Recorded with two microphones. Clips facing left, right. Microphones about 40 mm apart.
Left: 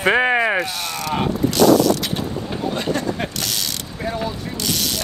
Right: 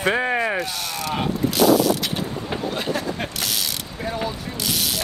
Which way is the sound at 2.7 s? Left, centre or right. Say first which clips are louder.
Left 5 dB; centre.